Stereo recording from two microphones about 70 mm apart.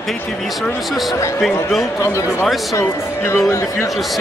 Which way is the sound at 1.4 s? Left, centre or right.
Centre.